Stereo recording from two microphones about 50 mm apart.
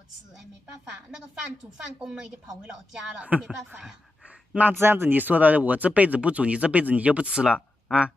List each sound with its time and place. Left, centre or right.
2.0 s speech: centre
4.7 s speech: right
5.1 s speech: right
7.2 s speech: centre